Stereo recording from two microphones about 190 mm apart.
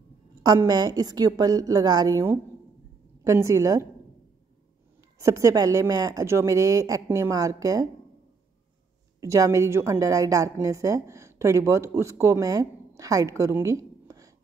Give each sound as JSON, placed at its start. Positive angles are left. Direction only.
{"t": 0.4, "sound": "a woman's voice", "side_deg": -20}
{"t": 5.2, "sound": "a woman's voice", "side_deg": -15}
{"t": 9.2, "sound": "a woman's voice", "side_deg": -15}